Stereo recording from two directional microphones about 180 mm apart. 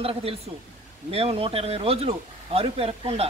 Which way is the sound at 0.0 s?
30° right (ahead or behind).